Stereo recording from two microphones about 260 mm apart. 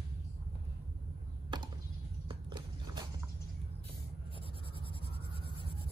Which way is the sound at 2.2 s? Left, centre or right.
Centre.